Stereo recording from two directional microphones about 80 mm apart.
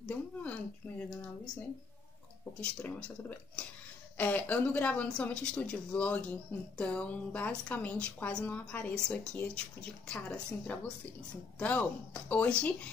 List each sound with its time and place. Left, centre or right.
0.0 s a woman's voice: centre
2.6 s a woman's voice: centre